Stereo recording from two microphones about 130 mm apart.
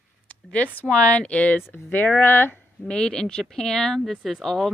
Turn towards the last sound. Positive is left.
turn(degrees=0)  # may be behind; listen again after turning